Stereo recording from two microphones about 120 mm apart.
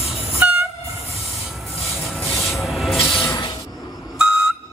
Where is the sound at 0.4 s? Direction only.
10° right (ahead or behind).